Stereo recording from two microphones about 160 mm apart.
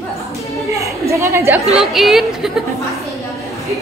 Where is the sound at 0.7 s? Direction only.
20° right (ahead or behind).